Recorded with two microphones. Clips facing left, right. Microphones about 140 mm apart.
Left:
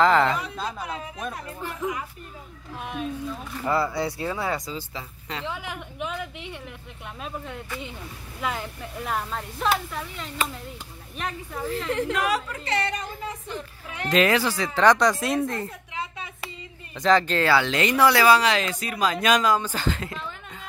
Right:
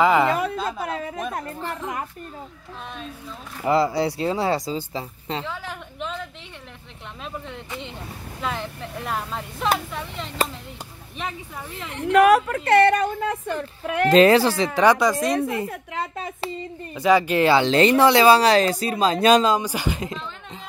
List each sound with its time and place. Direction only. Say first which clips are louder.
0.0 s a sound: right 1 dB; 10° right (ahead or behind)
0.3 s a woman's voice: right 6 dB; 55° right (ahead or behind)
0.8 s a sound: right 5 dB; 55° right (ahead or behind)
3.6 s a woman's voice: right 5 dB; 15° right (ahead or behind)
5.5 s a woman's voice: even; 15° left (ahead or behind)
8.4 s speech: right 1 dB; 5° left (ahead or behind)
12.1 s a woman's voice: right 10 dB; 60° right (ahead or behind)
14.1 s speech: right 6 dB; 30° right (ahead or behind)
14.8 s speech: right 1 dB; 5° right (ahead or behind)
15.4 s a woman's voice: right 3 dB; 10° right (ahead or behind)
15.7 s a woman's voice: right 5 dB; 50° right (ahead or behind)
16.9 s speech: right 2 dB; 10° right (ahead or behind); by 19.6 s 25° right (ahead or behind)
19.6 s a woman's voice: right 2 dB; 15° right (ahead or behind)